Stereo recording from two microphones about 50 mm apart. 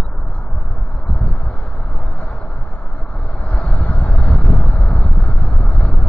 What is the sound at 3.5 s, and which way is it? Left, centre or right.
Vehicle, left.